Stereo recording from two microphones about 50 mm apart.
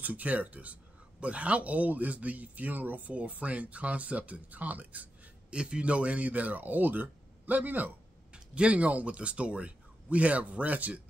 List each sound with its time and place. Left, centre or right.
0.0 s a man's voice: right
5.5 s a man's voice: right
8.3 s speech: right